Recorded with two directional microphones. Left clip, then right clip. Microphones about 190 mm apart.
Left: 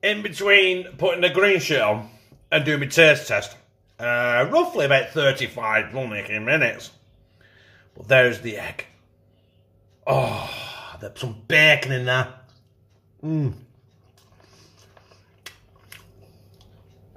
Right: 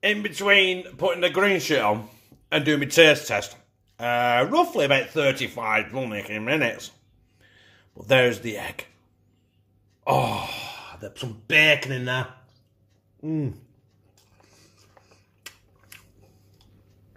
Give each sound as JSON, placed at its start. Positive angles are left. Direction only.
{"t": 0.0, "sound": "speech", "side_deg": -25}
{"t": 10.0, "sound": "speech", "side_deg": -30}
{"t": 14.4, "sound": "a sound", "side_deg": -10}